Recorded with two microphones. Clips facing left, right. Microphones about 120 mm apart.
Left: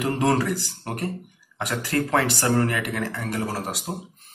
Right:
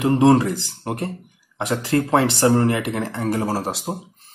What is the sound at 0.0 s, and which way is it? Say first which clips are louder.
Speech: right 7 dB; 25° right (ahead or behind).